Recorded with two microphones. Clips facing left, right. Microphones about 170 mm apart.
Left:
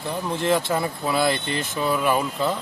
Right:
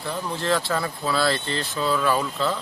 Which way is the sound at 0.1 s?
20° left (ahead or behind).